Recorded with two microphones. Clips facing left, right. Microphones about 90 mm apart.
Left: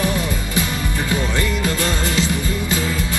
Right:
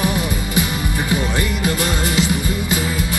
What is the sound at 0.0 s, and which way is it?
Music, 20° right (ahead or behind).